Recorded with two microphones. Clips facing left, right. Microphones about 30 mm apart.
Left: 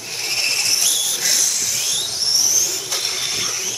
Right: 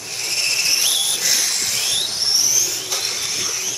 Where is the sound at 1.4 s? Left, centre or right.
Right.